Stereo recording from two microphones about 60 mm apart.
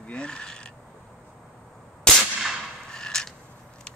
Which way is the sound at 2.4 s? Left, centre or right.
Centre.